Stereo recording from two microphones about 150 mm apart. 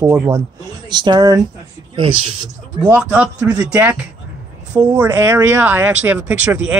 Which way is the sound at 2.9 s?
10° right (ahead or behind).